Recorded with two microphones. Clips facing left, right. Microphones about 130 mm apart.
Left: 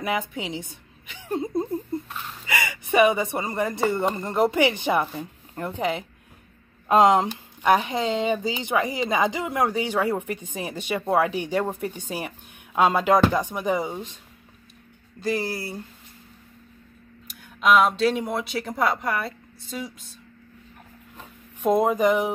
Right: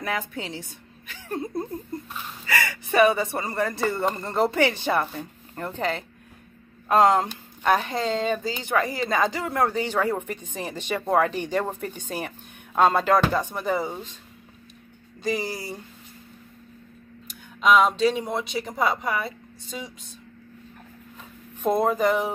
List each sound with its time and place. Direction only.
0.0 s a woman's voice: 20° left (ahead or behind)
15.1 s speech: centre (ahead or behind)
17.3 s speech: 5° left (ahead or behind)
21.6 s speech: 10° left (ahead or behind)